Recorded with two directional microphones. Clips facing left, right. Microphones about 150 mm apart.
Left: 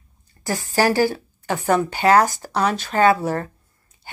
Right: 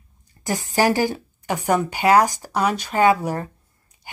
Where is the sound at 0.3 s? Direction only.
20° right (ahead or behind).